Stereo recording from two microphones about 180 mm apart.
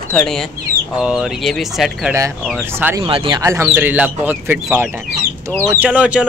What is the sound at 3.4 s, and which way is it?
Speech, 15° right (ahead or behind).